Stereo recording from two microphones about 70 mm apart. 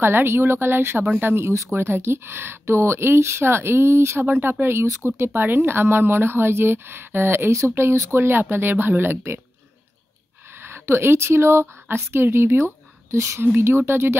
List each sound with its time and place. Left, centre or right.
0.0 s a woman's voice: right
10.5 s a woman's voice: right